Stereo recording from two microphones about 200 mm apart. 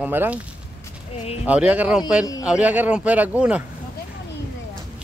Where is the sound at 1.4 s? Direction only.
5° right (ahead or behind).